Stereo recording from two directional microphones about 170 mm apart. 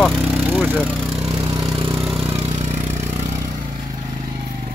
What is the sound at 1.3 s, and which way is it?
Vehicle, 25° right (ahead or behind).